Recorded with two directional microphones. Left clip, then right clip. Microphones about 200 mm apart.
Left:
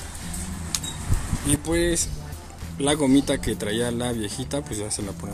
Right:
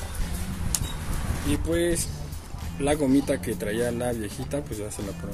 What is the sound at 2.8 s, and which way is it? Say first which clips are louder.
Speech: left 2 dB; 35° left (ahead or behind).